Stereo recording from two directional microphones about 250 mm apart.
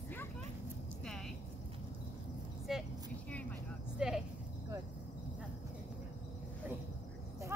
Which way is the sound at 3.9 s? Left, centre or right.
Centre.